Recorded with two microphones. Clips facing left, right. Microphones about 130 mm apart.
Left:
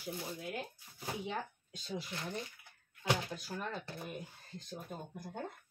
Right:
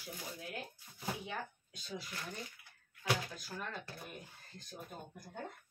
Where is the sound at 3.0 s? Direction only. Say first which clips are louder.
Left 2 dB; 25° left (ahead or behind).